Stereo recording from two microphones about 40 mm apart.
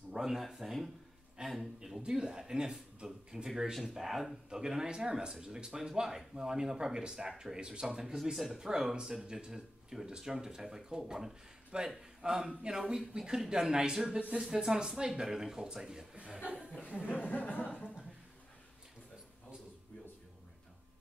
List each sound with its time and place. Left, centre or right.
0.2 s speech: centre
2.0 s a man's voice: centre
4.5 s a man's voice: centre
11.7 s a man's voice: right
16.3 s chuckle: right
17.2 s a sound: left